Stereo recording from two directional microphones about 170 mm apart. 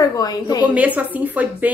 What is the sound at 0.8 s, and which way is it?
Speech, 10° right (ahead or behind).